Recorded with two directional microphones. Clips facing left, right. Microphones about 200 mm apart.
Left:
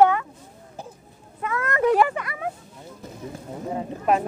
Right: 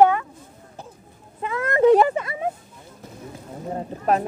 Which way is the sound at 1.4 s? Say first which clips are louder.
Right 5 dB; 25° right (ahead or behind).